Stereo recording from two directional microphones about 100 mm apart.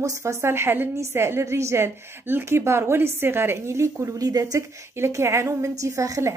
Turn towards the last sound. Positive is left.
turn(degrees=-30)  # may be behind; listen again after turning